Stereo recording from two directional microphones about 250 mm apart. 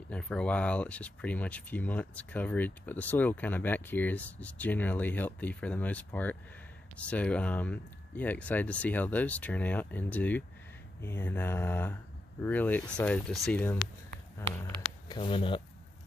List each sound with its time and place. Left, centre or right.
0.1 s speech: centre
15.0 s speech: centre